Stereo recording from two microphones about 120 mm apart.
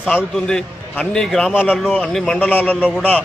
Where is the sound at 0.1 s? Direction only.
10° left (ahead or behind).